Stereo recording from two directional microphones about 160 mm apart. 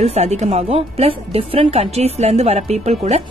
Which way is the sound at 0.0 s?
40° right (ahead or behind).